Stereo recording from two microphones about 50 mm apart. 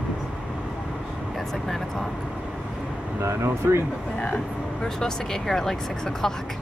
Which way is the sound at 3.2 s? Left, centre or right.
Right.